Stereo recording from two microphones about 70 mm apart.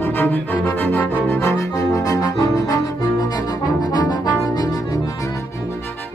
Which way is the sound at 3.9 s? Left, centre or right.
Left.